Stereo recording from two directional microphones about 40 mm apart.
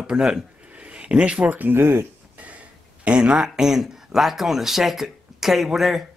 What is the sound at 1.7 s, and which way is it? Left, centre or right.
Speech, right.